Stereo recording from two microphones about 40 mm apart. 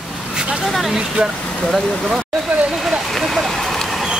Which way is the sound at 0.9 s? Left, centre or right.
Centre.